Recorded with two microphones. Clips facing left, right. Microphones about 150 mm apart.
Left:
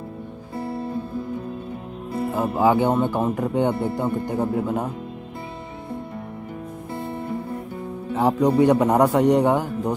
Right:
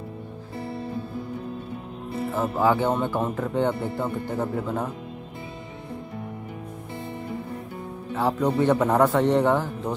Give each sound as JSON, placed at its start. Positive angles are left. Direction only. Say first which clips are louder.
{"t": 2.3, "sound": "a man's voice", "louder": "left 3 dB", "side_deg": 15}
{"t": 8.2, "sound": "a man's voice", "louder": "left 5 dB", "side_deg": 15}